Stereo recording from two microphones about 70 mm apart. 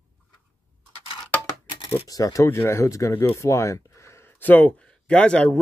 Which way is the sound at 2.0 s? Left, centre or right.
Left.